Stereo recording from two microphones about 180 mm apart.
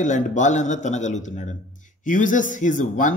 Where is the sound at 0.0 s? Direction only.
45° left (ahead or behind).